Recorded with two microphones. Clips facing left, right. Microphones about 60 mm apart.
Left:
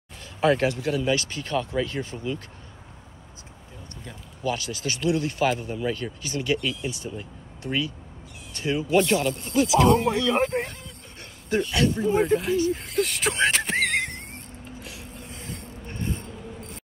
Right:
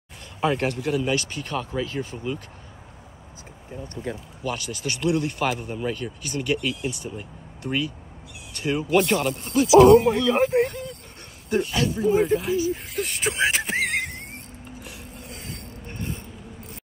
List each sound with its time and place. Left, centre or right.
0.4 s speech: centre
4.0 s speech: right
4.4 s speech: centre
8.6 s speech: centre
9.4 s speech: centre
14.8 s mechanisms: centre